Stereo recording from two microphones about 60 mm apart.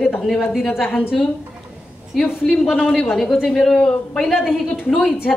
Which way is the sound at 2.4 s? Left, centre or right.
Centre.